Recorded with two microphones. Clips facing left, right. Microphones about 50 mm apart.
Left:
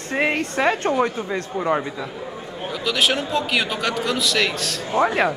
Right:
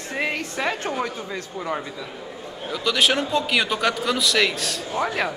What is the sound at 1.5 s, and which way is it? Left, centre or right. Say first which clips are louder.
Speech: left 7 dB; centre.